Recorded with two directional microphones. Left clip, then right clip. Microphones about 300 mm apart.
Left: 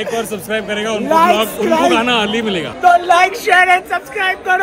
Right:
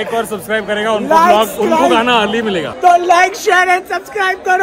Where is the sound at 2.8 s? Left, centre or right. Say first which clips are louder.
Right 1 dB; right.